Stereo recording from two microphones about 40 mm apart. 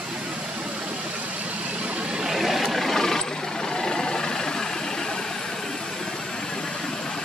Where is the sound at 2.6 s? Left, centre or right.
Centre.